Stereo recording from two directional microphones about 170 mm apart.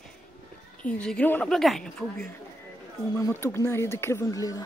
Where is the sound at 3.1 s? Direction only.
15° left (ahead or behind).